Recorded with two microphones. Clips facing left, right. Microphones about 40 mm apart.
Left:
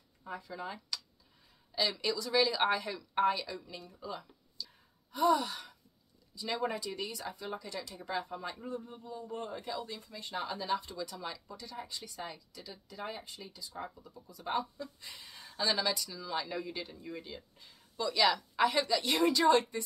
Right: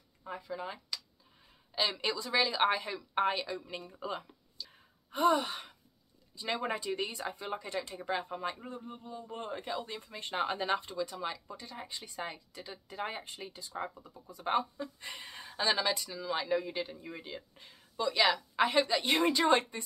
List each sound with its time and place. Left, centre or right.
0.2 s speech: centre
1.8 s speech: right
2.3 s speech: centre; by 4.3 s right
4.6 s sigh: right
5.1 s speech: right
15.4 s speech: right